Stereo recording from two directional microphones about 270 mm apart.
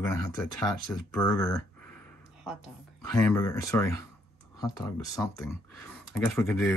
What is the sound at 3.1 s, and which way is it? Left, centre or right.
Speech, centre.